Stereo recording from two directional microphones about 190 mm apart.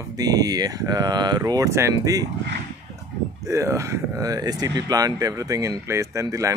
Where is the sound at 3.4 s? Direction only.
15° right (ahead or behind).